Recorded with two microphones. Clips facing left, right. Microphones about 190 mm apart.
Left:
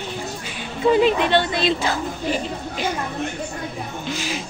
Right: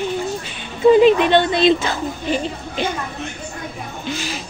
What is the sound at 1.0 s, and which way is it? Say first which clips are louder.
Speech: right 5 dB; 20° right (ahead or behind).